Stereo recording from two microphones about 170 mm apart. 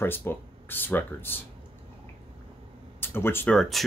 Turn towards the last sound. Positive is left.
turn(degrees=0)  # may be behind; listen again after turning